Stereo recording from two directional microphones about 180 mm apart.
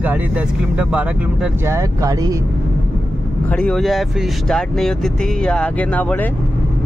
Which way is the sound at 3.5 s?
5° left (ahead or behind).